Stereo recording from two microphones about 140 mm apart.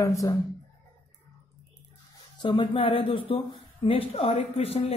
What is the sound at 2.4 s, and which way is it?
A woman's voice, 35° left (ahead or behind).